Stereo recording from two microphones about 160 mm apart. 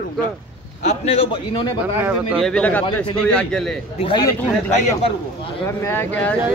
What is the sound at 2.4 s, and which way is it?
A man's voice, 10° left (ahead or behind).